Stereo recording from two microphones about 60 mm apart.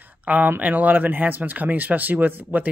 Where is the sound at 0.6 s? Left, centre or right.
Right.